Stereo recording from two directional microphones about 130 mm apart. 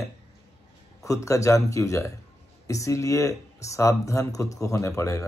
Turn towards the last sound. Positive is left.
turn(degrees=25)  # may be behind; listen again after turning